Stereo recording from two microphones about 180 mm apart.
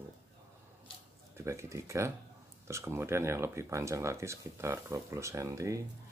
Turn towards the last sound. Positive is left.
turn(degrees=-15)  # may be behind; listen again after turning